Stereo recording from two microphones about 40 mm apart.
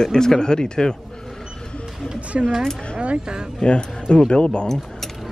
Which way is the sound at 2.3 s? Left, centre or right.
Right.